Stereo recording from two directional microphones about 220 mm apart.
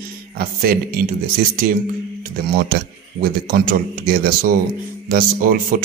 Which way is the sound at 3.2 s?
45° right (ahead or behind).